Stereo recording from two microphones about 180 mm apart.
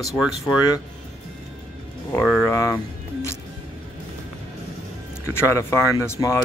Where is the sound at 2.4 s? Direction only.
15° left (ahead or behind).